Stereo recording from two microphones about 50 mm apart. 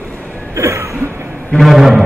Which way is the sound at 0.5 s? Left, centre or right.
Right.